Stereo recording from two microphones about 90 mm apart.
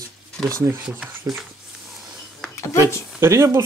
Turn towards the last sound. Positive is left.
turn(degrees=-35)  # may be behind; listen again after turning